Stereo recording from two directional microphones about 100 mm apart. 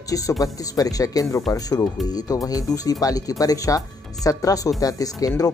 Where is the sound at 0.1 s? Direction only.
35° left (ahead or behind).